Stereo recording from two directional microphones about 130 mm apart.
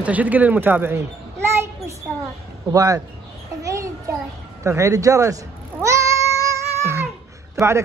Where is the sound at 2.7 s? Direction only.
25° right (ahead or behind).